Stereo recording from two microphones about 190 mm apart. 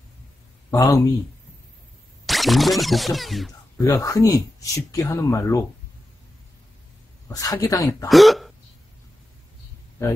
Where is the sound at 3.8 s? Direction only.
15° left (ahead or behind).